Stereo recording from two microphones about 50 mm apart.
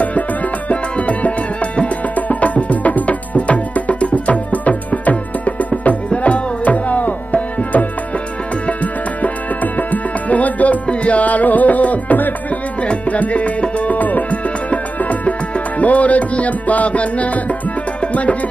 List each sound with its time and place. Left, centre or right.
0.0 s music: left
7.3 s tabla: left
8.6 s music: left